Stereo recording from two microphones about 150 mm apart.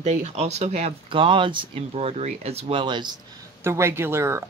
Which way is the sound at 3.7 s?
15° right (ahead or behind).